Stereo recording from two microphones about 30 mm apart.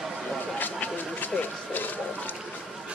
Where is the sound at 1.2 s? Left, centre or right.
Left.